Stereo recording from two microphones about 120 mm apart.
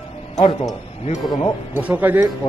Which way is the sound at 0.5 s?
35° left (ahead or behind).